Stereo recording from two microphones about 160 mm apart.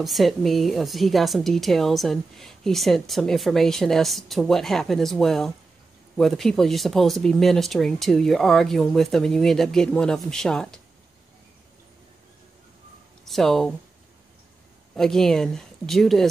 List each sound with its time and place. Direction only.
0.0 s a woman's voice: centre (ahead or behind)
13.3 s a woman's voice: centre (ahead or behind)
15.0 s a woman's voice: centre (ahead or behind)